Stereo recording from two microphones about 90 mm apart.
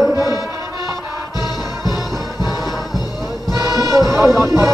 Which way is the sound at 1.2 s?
Centre (ahead or behind).